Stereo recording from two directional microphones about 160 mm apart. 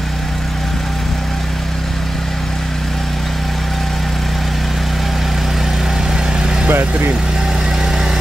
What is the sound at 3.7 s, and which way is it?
Vehicle, centre (ahead or behind).